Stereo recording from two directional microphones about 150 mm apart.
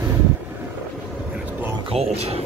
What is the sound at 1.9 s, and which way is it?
Speech, 45° right (ahead or behind).